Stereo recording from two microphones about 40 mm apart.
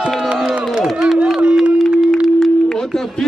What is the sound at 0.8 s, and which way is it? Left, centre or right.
Run, centre.